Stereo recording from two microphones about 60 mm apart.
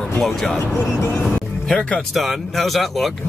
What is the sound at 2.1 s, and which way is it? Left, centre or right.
Speech, centre.